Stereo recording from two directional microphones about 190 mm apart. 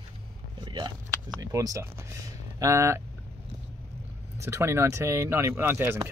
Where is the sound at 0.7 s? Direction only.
25° right (ahead or behind).